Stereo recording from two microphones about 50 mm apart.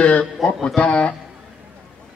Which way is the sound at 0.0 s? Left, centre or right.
Centre.